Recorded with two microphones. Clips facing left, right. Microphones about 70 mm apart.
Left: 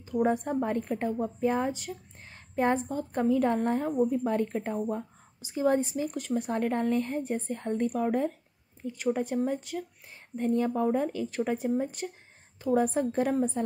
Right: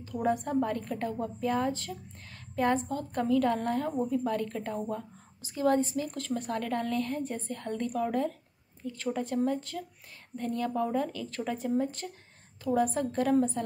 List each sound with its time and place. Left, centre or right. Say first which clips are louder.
0.0 s a woman's voice: left 3 dB; left